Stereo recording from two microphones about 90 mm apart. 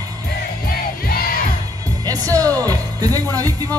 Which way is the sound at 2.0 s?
40° right (ahead or behind).